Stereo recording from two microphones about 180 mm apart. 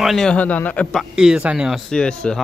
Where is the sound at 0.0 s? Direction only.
Centre (ahead or behind).